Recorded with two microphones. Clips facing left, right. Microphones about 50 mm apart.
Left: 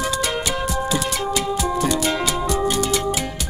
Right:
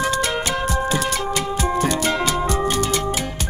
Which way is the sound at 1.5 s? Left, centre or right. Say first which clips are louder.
Right 2 dB; right.